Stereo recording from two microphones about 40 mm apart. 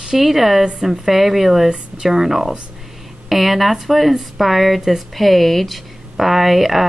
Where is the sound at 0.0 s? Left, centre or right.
Centre.